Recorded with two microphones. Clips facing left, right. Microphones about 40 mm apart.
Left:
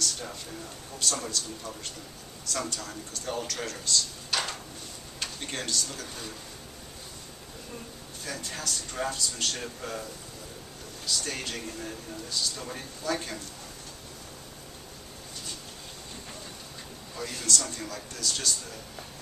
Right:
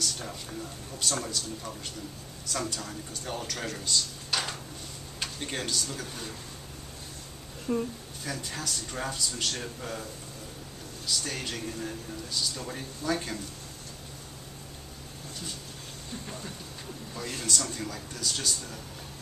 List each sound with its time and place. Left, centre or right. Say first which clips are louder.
0.0 s a man's voice: left 1 dB; centre
2.7 s a man's voice: even; centre
4.3 s a sound: left 1 dB; centre
5.2 s speech: right 1 dB; centre
7.7 s speech: right 15 dB; right
8.2 s speech: right 1 dB; centre
11.1 s speech: even; centre
17.1 s speech: left 1 dB; centre